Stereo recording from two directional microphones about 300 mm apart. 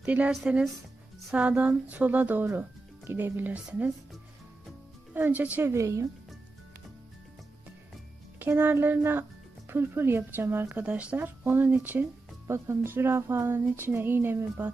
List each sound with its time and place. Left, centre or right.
0.0 s speech: centre
5.1 s speech: centre
8.4 s speech: centre